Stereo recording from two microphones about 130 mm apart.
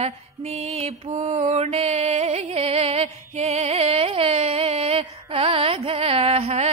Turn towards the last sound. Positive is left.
turn(degrees=-55)  # may be behind; listen again after turning